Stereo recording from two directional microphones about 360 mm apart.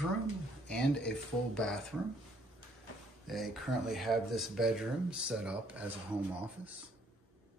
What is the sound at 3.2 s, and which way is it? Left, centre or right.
Speech, centre.